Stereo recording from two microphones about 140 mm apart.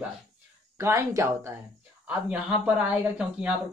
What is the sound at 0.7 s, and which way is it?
Speech, 20° right (ahead or behind).